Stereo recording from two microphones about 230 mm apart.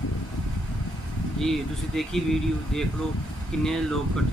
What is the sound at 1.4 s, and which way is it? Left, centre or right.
Speech, centre.